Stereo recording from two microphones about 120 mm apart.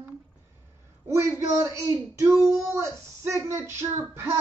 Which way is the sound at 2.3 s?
Centre (ahead or behind).